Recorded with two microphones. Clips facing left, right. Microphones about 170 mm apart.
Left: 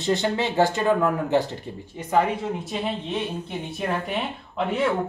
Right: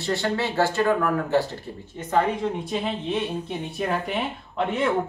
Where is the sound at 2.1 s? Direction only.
5° left (ahead or behind).